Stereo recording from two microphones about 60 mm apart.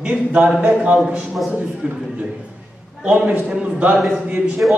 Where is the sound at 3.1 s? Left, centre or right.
Right.